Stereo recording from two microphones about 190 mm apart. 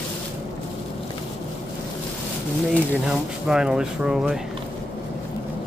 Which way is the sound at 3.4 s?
5° right (ahead or behind).